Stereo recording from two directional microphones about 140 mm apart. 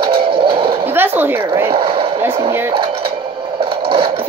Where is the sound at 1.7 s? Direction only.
40° right (ahead or behind).